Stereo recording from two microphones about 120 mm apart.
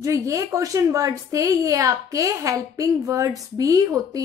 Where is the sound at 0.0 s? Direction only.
25° right (ahead or behind).